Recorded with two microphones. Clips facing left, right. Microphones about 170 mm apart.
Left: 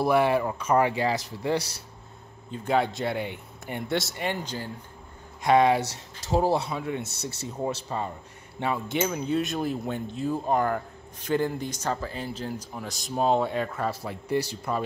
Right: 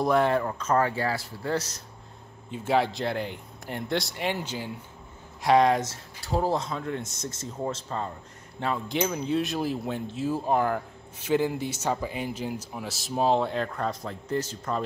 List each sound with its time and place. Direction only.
0.0 s speech: 10° left (ahead or behind)
2.5 s speech: 5° right (ahead or behind)
5.4 s speech: centre (ahead or behind)
6.3 s speech: 10° left (ahead or behind)